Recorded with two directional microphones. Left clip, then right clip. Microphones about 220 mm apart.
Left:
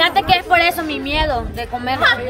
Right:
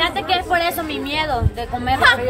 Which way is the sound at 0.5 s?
25° left (ahead or behind).